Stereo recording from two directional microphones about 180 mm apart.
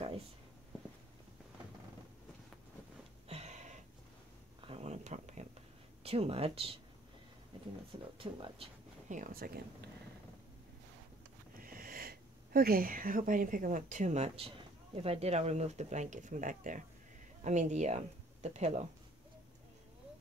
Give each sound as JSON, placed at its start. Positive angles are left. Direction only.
{"t": 3.3, "sound": "a sound", "side_deg": -35}
{"t": 6.0, "sound": "speech", "side_deg": -35}
{"t": 7.5, "sound": "a sound", "side_deg": -30}
{"t": 8.2, "sound": "speech", "side_deg": -30}
{"t": 9.1, "sound": "speech", "side_deg": -50}
{"t": 11.6, "sound": "speech", "side_deg": -50}